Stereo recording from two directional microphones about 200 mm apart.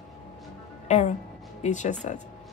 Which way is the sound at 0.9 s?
35° left (ahead or behind).